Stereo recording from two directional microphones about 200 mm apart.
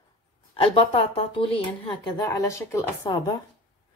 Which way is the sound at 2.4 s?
15° left (ahead or behind).